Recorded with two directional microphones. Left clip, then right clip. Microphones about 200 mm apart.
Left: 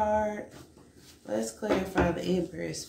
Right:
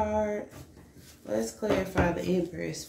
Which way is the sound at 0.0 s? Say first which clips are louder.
Left 2 dB; 15° left (ahead or behind).